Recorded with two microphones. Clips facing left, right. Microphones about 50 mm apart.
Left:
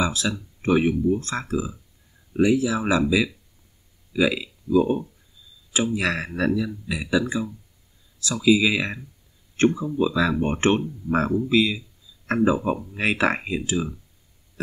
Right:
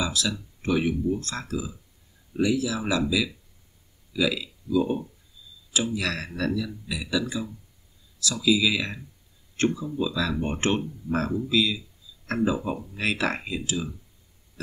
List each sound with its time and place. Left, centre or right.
0.0 s speech: left